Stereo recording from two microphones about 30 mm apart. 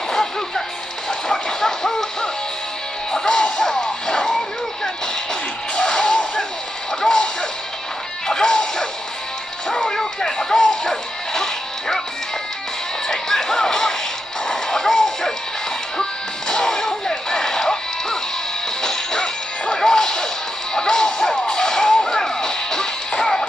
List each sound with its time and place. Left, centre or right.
1.3 s train: centre
3.1 s music: left
8.3 s music: left
13.1 s music: centre
19.6 s smash: left
20.7 s music: left